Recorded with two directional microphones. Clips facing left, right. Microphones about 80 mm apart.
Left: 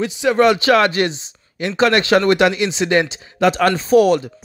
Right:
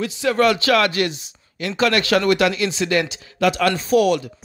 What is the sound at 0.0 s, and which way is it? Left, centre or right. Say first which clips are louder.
Speech: left 3 dB; left.